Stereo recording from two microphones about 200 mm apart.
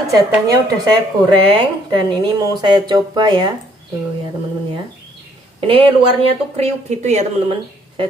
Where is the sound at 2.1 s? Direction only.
20° right (ahead or behind).